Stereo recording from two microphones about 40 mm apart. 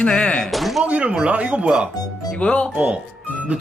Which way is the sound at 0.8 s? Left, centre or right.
Right.